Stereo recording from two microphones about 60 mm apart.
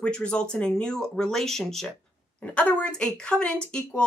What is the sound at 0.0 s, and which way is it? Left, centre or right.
A woman's voice, centre.